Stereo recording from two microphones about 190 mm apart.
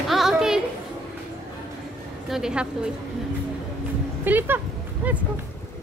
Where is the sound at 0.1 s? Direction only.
Centre (ahead or behind).